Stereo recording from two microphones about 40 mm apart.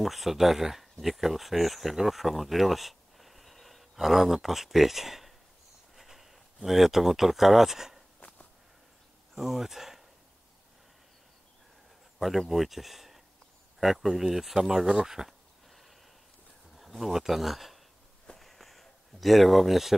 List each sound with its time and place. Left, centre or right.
0.0 s speech: centre
8.2 s a sound: left
9.3 s speech: centre
12.2 s speech: centre
16.7 s speech: centre
18.4 s a sound: centre